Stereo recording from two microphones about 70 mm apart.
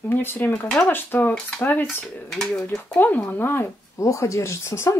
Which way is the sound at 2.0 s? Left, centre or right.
Centre.